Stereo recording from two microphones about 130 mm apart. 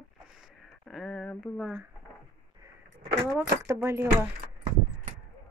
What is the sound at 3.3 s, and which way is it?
Speech, 20° right (ahead or behind).